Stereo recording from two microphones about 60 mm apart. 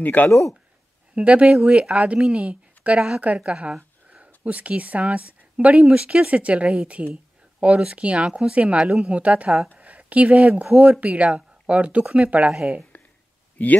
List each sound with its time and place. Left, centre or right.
0.0 s speech: left
1.1 s speech: right